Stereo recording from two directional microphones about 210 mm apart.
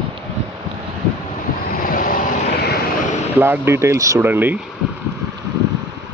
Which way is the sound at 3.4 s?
10° right (ahead or behind).